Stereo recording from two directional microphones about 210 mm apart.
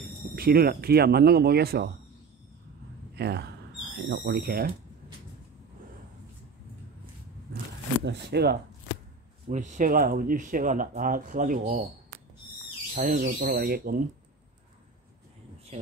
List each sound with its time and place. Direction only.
0.4 s speech: 45° right (ahead or behind)
3.2 s speech: 50° right (ahead or behind)
8.0 s speech: 55° right (ahead or behind)
9.5 s speech: 35° right (ahead or behind)
12.9 s speech: 40° right (ahead or behind)